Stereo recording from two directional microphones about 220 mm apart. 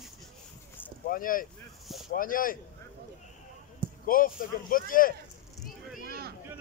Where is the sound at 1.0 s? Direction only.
40° left (ahead or behind).